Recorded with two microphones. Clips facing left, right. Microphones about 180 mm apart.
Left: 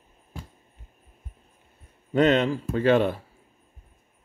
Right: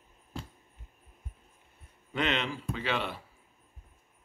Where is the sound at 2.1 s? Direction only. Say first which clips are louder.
Left 11 dB; 40° left (ahead or behind).